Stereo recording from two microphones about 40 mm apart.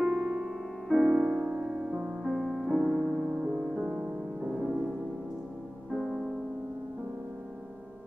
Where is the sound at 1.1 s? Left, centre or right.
Centre.